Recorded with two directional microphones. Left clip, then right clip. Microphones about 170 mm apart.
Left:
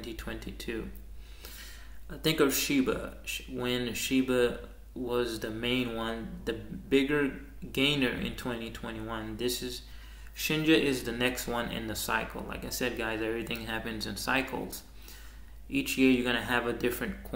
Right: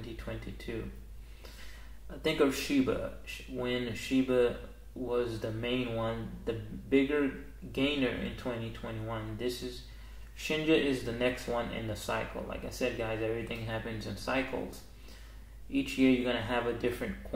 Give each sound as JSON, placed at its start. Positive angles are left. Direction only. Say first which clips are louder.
{"t": 0.2, "sound": "speech", "louder": "left 2 dB", "side_deg": 15}
{"t": 2.0, "sound": "speech", "louder": "left 2 dB", "side_deg": 15}
{"t": 10.5, "sound": "speech", "louder": "left 2 dB", "side_deg": 15}
{"t": 15.7, "sound": "speech", "louder": "left 2 dB", "side_deg": 15}